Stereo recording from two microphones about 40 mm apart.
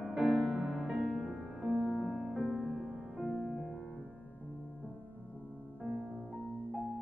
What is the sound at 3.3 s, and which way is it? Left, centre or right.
Music, left.